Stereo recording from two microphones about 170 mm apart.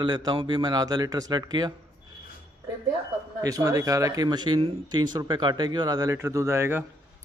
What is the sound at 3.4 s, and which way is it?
Speech, 20° right (ahead or behind).